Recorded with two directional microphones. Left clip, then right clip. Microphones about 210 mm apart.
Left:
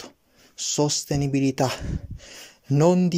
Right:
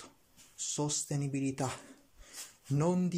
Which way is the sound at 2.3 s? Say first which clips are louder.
Left 11 dB; 35° left (ahead or behind).